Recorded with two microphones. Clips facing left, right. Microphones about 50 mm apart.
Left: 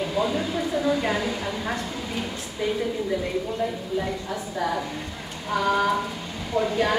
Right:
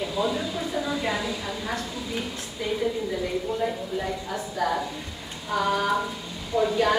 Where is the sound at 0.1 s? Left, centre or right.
Left.